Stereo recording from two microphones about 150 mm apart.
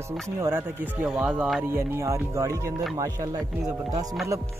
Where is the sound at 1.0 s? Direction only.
5° right (ahead or behind).